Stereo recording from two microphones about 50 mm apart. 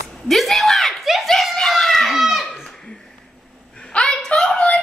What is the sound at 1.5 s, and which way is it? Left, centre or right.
Children playing, centre.